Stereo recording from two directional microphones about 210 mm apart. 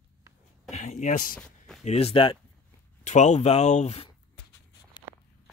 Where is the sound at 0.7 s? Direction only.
35° left (ahead or behind).